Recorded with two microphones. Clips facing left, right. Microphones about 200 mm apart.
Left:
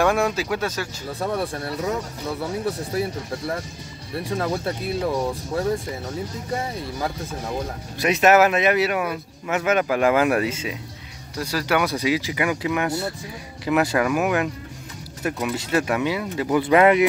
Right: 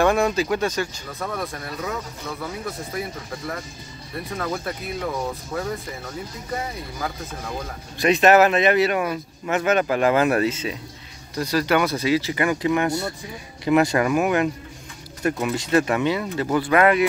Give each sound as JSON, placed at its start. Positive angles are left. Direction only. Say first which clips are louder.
{"t": 0.0, "sound": "speech", "louder": "right 1 dB", "side_deg": 5}
{"t": 1.2, "sound": "speech", "louder": "left 4 dB", "side_deg": 30}
{"t": 6.5, "sound": "speech", "louder": "left 1 dB", "side_deg": 30}
{"t": 8.0, "sound": "speech", "louder": "right 1 dB", "side_deg": 5}
{"t": 16.6, "sound": "speech", "louder": "left 3 dB", "side_deg": 20}